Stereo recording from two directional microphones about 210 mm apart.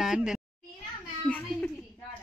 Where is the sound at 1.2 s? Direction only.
5° left (ahead or behind).